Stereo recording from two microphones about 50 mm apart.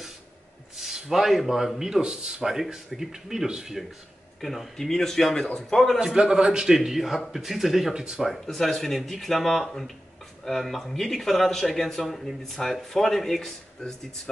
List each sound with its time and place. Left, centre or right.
0.7 s speech: centre
4.4 s a man's voice: centre
5.9 s speech: centre
7.9 s speech: centre
8.2 s speech: centre